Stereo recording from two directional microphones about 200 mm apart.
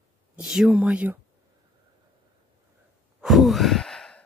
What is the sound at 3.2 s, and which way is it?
Sigh, centre (ahead or behind).